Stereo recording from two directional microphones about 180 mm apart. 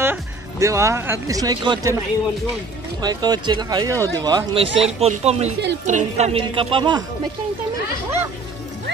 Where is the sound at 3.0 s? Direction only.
20° right (ahead or behind).